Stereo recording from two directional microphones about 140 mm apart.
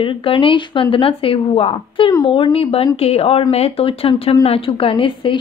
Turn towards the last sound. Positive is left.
turn(degrees=40)  # may be behind; listen again after turning